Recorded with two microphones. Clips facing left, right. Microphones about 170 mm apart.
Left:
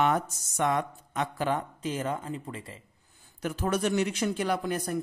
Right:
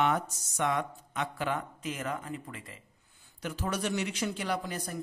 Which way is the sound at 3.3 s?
50° left (ahead or behind).